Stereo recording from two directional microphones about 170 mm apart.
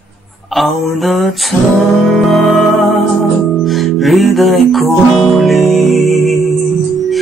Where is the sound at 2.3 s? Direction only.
Centre (ahead or behind).